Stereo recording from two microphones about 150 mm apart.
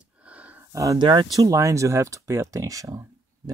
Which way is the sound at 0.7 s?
20° right (ahead or behind).